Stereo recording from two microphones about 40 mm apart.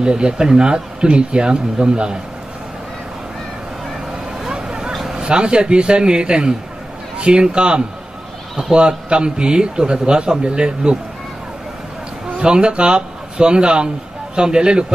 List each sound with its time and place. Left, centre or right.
0.0 s a man's voice: centre
4.4 s vehicle: centre
4.9 s a sound: centre
5.2 s a man's voice: right
12.4 s a man's voice: right